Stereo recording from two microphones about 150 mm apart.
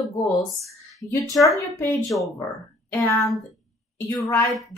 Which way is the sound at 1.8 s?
15° left (ahead or behind).